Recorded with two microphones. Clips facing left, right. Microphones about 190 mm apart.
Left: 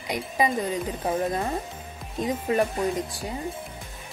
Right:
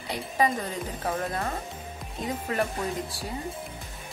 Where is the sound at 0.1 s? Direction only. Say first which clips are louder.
Left 1 dB; 15° left (ahead or behind).